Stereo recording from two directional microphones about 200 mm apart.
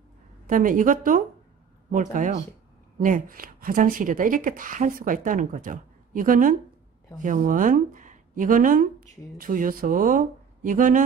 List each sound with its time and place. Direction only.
0.5 s speech: 40° right (ahead or behind)